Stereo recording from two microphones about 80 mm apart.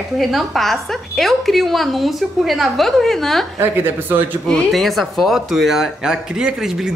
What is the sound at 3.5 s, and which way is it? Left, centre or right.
Speech, right.